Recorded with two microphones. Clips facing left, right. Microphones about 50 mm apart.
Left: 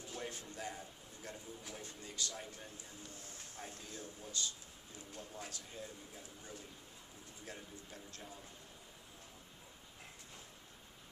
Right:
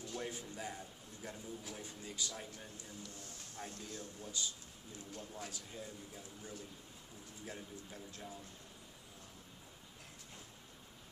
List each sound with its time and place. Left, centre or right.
0.0 s a sound: centre
0.3 s a man's voice: centre
0.7 s a man's voice: centre
3.0 s speech: left
4.4 s a man's voice: centre
5.1 s speech: centre
7.4 s speech: centre